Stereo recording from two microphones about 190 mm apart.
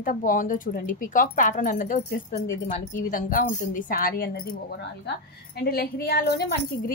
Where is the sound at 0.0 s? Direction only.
45° left (ahead or behind).